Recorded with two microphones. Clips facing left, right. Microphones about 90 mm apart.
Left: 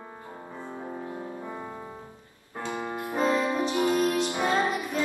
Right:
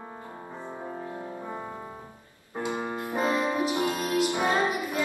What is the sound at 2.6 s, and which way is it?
Music, 20° right (ahead or behind).